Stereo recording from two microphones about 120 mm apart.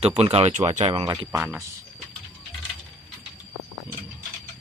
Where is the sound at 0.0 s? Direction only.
60° right (ahead or behind).